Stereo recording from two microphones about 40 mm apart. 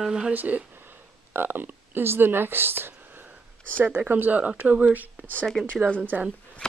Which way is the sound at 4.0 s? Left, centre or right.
Right.